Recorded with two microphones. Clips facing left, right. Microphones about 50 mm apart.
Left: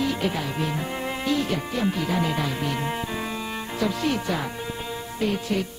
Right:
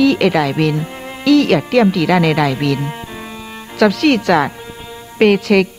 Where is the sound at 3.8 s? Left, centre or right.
Right.